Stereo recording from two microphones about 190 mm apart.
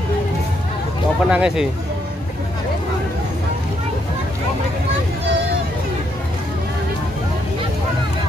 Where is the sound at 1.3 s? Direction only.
5° right (ahead or behind).